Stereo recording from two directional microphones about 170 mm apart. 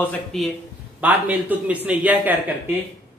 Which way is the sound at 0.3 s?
Centre (ahead or behind).